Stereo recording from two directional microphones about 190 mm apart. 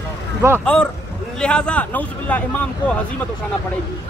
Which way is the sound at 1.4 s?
5° left (ahead or behind).